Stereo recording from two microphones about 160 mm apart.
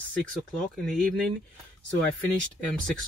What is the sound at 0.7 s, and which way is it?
Speech, centre (ahead or behind).